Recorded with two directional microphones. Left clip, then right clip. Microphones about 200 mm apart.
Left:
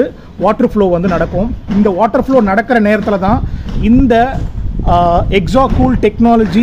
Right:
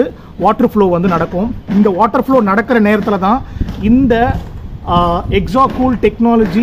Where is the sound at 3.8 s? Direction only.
20° left (ahead or behind).